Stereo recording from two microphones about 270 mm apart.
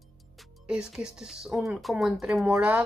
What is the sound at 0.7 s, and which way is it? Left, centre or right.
Speech, centre.